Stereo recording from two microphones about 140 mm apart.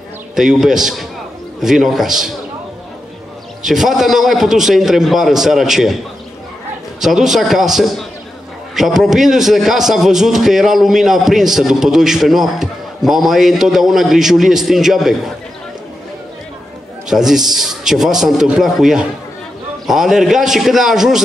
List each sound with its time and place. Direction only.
0.4 s a man's voice: 5° right (ahead or behind)
3.6 s a man's voice: 5° right (ahead or behind)
7.0 s a man's voice: 5° right (ahead or behind)
17.1 s a man's voice: 5° right (ahead or behind)